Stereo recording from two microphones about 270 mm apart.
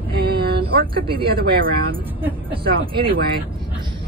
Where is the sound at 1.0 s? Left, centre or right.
Centre.